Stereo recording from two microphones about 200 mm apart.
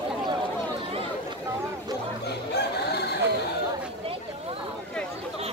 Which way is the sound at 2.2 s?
55° left (ahead or behind).